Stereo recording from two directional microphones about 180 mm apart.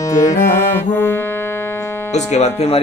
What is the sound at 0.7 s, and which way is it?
Music, 10° left (ahead or behind).